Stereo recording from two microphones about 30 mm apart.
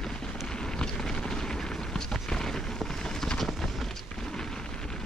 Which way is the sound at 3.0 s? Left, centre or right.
Centre.